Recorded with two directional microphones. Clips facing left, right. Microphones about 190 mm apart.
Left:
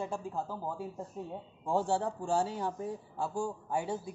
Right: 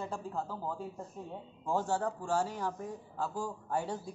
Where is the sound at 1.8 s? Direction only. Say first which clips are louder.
Left 2 dB; 30° left (ahead or behind).